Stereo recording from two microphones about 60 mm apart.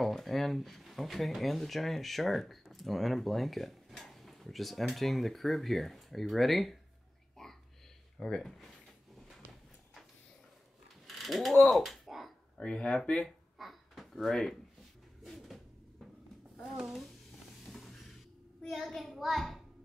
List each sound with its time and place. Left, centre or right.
0.0 s speech: centre
7.4 s whispering: centre
8.2 s speech: centre
11.1 s mechanisms: centre
11.7 s a sound: centre
12.5 s speech: centre
13.6 s a sound: centre
14.2 s speech: centre
15.2 s bird: centre
16.7 s speech: centre
17.6 s a sound: centre
18.9 s speech: centre